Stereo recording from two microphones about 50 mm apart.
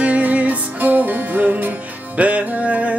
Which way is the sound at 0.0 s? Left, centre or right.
Right.